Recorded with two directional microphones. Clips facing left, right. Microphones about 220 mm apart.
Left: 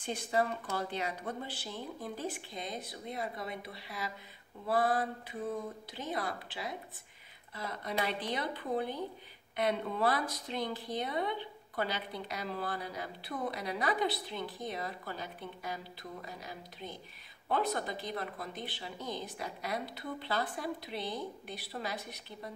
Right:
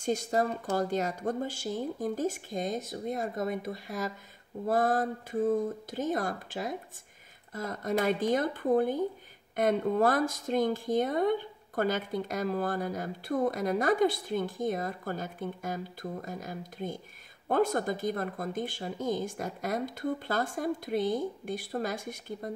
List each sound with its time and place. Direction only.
0.0 s speech: 40° right (ahead or behind)